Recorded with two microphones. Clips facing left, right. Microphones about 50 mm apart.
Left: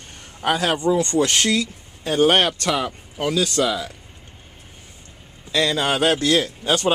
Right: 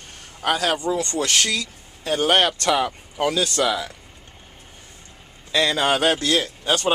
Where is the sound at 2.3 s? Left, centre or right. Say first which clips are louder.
Even; centre.